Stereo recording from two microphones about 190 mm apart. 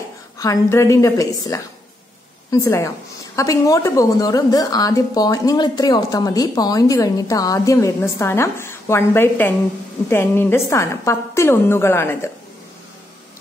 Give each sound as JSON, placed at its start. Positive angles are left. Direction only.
{"t": 0.4, "sound": "a woman's voice", "side_deg": 15}